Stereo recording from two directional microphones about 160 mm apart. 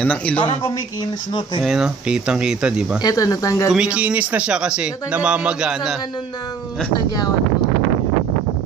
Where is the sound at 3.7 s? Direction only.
5° right (ahead or behind).